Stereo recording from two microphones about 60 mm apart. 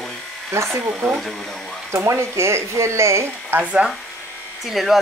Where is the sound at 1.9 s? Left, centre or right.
Right.